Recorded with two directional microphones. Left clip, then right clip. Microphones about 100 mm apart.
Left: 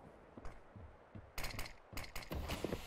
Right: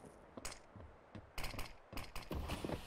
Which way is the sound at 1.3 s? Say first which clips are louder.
Left 1 dB; 10° left (ahead or behind).